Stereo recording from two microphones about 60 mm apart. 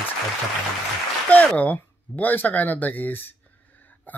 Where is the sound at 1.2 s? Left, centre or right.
Left.